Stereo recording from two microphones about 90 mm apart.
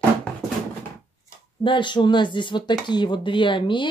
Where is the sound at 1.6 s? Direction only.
65° left (ahead or behind).